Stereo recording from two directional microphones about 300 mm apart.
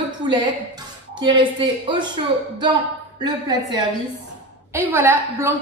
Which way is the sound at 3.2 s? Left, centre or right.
Centre.